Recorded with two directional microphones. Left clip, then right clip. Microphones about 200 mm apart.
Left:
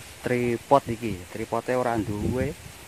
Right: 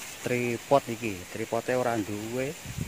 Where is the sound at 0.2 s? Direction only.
30° left (ahead or behind).